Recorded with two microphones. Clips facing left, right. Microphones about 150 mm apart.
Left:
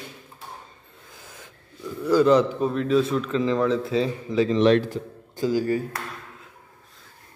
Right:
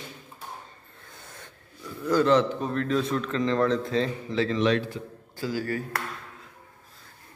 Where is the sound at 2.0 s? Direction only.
10° left (ahead or behind).